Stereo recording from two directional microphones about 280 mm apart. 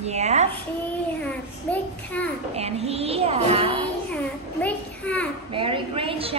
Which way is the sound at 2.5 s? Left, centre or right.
Right.